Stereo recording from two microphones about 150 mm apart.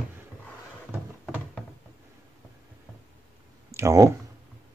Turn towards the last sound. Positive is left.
turn(degrees=-20)  # may be behind; listen again after turning